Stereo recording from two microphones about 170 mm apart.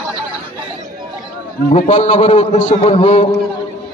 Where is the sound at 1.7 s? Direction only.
45° left (ahead or behind).